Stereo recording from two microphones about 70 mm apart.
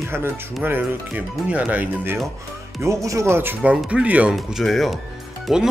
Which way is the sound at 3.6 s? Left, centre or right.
Centre.